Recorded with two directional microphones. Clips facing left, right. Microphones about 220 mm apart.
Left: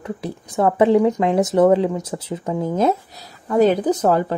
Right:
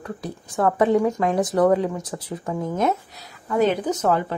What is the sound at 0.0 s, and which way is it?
A woman's voice, 25° left (ahead or behind).